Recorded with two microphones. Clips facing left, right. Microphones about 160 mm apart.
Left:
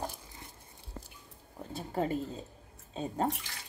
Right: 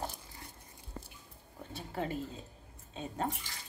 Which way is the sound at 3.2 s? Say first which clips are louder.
Left 4 dB; 75° left (ahead or behind).